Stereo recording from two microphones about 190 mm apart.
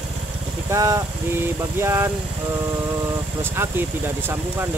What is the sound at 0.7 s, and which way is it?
Speech, 15° right (ahead or behind).